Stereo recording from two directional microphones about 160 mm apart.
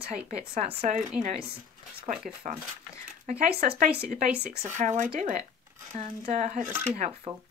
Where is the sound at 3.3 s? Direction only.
40° right (ahead or behind).